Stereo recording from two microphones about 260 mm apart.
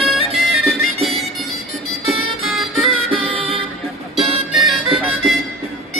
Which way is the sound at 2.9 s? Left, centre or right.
Right.